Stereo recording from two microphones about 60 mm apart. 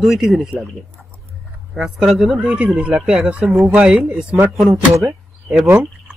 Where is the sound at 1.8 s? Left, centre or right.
Centre.